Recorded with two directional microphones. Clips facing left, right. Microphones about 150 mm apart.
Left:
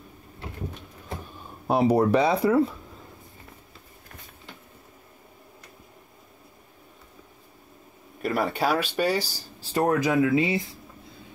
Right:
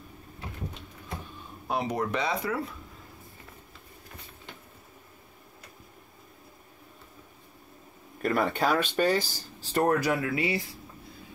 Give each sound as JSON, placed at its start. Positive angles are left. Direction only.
{"t": 1.7, "sound": "speech", "side_deg": 35}
{"t": 8.2, "sound": "speech", "side_deg": 5}